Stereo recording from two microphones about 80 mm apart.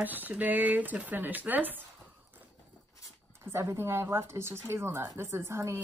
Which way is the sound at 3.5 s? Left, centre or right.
Right.